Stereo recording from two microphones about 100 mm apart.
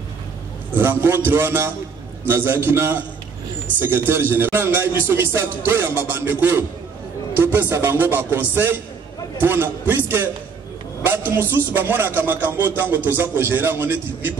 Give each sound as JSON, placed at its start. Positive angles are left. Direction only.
{"t": 0.7, "sound": "a man's voice", "side_deg": -20}